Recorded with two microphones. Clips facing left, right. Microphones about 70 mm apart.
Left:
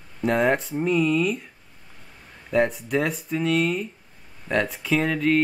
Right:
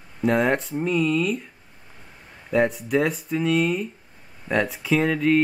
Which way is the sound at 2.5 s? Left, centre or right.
Centre.